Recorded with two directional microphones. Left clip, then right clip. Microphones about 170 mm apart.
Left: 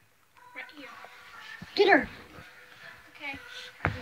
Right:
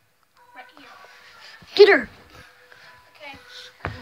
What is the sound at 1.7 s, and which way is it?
Speech, 60° right (ahead or behind).